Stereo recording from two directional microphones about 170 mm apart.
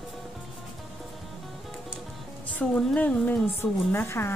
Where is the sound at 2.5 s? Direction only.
10° left (ahead or behind).